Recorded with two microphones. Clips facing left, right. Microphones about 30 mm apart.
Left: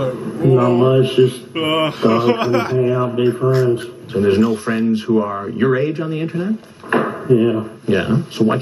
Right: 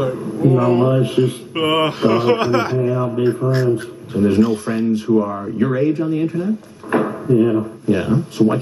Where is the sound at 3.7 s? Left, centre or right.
Left.